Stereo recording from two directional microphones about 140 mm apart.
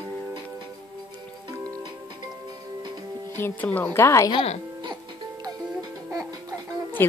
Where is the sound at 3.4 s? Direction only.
10° left (ahead or behind).